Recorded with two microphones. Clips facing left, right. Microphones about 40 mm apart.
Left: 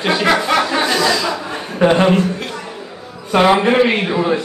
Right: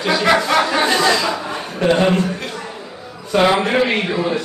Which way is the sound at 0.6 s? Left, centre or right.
Centre.